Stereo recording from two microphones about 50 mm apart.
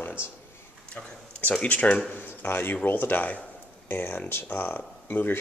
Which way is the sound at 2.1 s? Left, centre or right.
Left.